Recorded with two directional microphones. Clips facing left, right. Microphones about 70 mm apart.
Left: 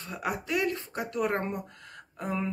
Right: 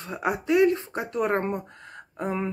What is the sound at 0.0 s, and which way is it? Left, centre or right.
Speech, right.